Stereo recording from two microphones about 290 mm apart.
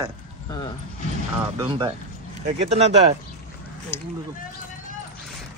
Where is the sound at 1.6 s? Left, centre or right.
Centre.